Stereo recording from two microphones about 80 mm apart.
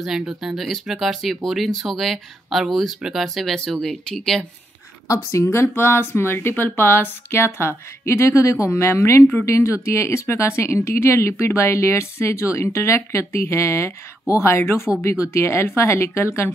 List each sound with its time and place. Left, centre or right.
0.0 s speech: centre
5.0 s speech: left